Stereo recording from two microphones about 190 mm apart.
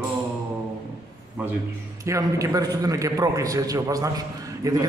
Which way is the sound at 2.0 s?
15° right (ahead or behind).